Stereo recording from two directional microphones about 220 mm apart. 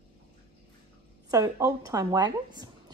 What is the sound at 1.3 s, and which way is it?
Speech, 15° right (ahead or behind).